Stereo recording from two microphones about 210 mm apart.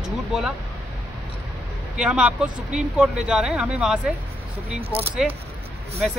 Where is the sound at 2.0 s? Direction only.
5° right (ahead or behind).